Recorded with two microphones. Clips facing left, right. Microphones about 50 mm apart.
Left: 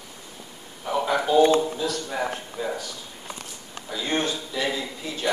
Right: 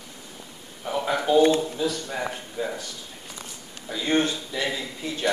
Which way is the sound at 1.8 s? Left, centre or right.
Centre.